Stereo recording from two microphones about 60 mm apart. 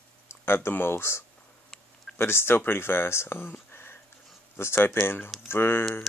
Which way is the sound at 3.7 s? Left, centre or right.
Left.